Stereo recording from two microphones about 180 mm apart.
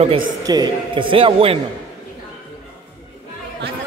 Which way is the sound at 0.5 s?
20° right (ahead or behind).